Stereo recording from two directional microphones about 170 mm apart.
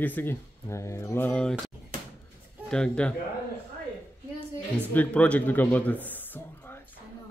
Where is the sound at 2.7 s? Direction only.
5° left (ahead or behind).